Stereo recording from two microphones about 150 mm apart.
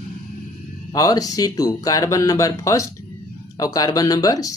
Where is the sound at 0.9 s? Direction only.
25° left (ahead or behind).